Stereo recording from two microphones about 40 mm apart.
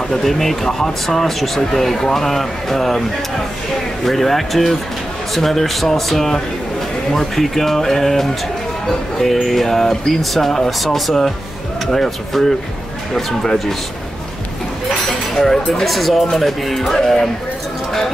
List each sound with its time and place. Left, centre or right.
0.1 s speech: centre
4.0 s speech: centre
15.3 s speech: centre